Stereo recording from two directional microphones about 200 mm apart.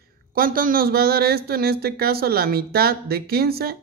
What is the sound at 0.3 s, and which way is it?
Speech, 45° right (ahead or behind).